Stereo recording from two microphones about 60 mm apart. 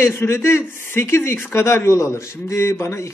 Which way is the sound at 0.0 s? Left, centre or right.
Left.